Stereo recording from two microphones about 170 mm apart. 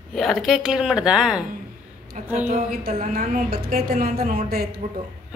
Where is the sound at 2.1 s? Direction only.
45° right (ahead or behind).